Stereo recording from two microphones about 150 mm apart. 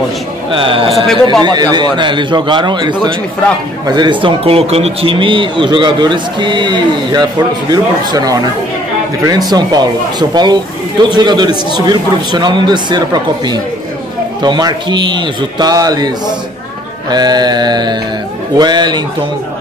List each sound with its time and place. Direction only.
0.5 s a man's voice: 35° right (ahead or behind)
0.9 s a man's voice: centre (ahead or behind)
1.4 s a man's voice: 30° right (ahead or behind)